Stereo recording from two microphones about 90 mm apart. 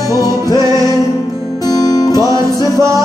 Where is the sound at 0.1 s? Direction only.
45° left (ahead or behind).